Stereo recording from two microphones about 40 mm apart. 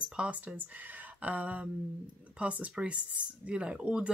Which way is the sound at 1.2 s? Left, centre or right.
Right.